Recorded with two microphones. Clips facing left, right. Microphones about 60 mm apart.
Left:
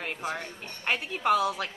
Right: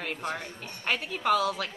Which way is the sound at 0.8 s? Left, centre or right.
Centre.